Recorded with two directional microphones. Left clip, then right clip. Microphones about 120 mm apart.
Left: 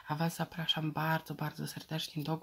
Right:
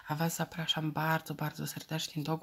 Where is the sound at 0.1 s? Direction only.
20° right (ahead or behind).